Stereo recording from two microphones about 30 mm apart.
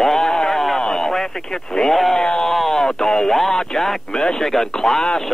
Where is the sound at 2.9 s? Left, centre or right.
Left.